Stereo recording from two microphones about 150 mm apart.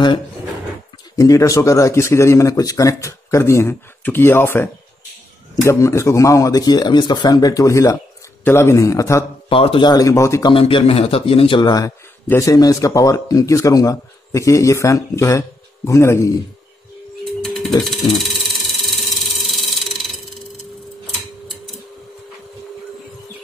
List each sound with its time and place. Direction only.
1.1 s a man's voice: 20° left (ahead or behind)
9.5 s a man's voice: 35° left (ahead or behind); by 10.5 s 20° left (ahead or behind)
10.5 s a man's voice: 35° left (ahead or behind); by 16.3 s 20° left (ahead or behind)
17.4 s a sound: centre (ahead or behind)